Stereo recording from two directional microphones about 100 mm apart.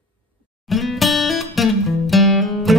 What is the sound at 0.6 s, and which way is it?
Music, centre (ahead or behind).